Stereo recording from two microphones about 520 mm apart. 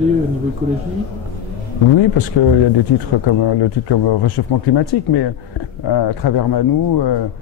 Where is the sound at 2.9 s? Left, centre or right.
Left.